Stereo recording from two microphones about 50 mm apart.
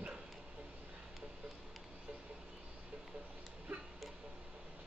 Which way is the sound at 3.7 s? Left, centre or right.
Right.